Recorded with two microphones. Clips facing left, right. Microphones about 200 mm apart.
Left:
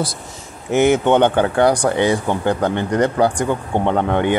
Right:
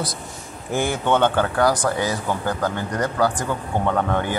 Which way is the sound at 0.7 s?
20° left (ahead or behind).